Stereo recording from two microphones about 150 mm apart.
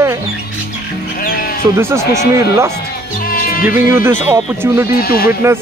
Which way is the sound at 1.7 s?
15° right (ahead or behind).